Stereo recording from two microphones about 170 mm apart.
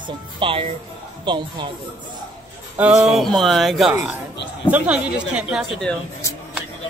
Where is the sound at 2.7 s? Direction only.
5° right (ahead or behind).